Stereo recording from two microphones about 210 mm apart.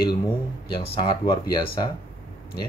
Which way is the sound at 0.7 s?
25° left (ahead or behind).